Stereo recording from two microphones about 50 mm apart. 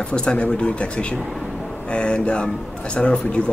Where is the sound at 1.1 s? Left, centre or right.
Centre.